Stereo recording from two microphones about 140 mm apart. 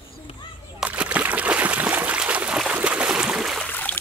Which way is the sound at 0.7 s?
10° right (ahead or behind).